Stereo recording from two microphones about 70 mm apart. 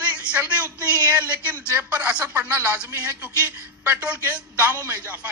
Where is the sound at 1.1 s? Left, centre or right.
Right.